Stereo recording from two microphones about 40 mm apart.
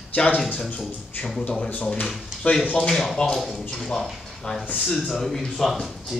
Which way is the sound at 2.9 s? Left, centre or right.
Centre.